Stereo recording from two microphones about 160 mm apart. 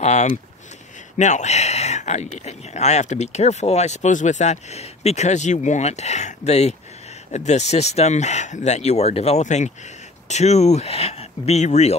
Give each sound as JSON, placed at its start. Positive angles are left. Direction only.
{"t": 0.0, "sound": "speech", "side_deg": 45}